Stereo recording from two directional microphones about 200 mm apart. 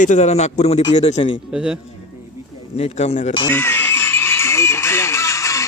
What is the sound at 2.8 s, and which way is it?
Speech, 30° left (ahead or behind).